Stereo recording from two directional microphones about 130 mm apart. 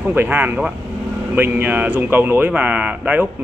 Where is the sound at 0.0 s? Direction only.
15° right (ahead or behind).